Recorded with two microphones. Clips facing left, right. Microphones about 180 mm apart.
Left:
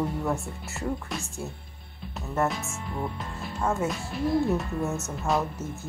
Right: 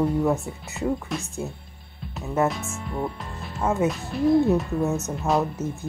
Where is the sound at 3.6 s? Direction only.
20° right (ahead or behind).